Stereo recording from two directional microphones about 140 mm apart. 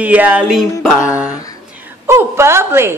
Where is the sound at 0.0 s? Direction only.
10° right (ahead or behind).